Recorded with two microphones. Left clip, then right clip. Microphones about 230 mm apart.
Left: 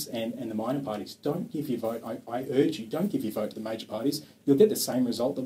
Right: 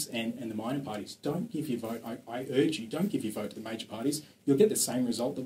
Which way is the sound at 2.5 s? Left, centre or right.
Right.